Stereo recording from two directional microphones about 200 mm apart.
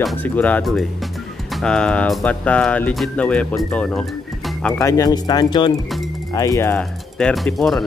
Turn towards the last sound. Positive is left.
turn(degrees=0)  # may be behind; listen again after turning